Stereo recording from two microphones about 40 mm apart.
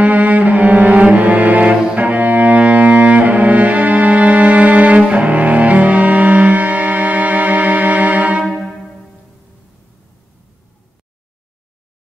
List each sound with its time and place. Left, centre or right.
0.0 s cello: right
2.0 s music: right